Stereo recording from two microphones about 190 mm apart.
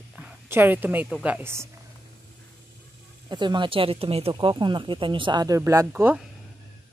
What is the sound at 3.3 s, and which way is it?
Speech, 25° right (ahead or behind).